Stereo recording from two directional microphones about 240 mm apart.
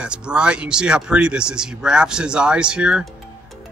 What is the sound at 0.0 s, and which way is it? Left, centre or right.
Speech, centre.